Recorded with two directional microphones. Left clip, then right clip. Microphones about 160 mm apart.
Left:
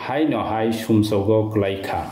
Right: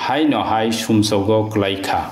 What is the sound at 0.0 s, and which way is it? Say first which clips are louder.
A man's voice: right 4 dB; 15° left (ahead or behind).